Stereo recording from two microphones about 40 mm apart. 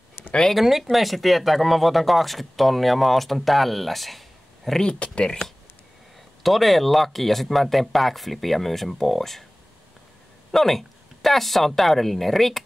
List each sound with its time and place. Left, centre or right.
0.6 s speech: centre
4.6 s speech: centre
4.9 s speech: left
6.4 s speech: centre
10.5 s speech: centre